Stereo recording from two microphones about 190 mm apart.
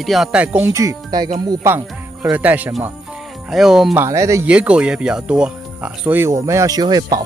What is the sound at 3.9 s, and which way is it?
Speech, 15° right (ahead or behind).